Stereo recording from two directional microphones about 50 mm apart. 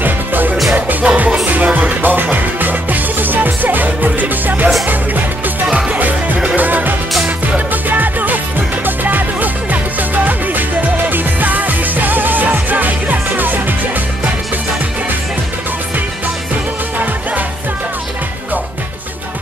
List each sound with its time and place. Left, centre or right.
0.0 s music: right
5.7 s music: right
5.9 s music: right